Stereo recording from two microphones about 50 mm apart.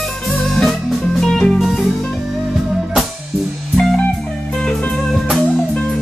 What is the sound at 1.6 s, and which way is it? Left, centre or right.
Music, centre.